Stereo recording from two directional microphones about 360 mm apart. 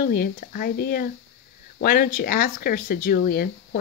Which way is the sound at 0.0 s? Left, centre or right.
Left.